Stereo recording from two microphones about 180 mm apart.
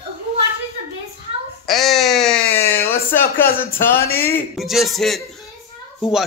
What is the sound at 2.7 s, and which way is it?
Speech, 10° left (ahead or behind).